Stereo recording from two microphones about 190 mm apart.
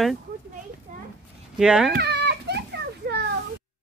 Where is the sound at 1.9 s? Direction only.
60° right (ahead or behind).